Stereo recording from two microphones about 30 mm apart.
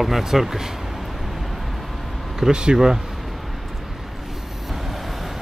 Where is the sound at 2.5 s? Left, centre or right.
Right.